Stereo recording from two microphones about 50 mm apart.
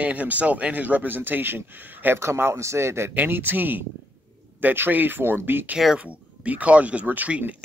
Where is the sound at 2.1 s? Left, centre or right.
Right.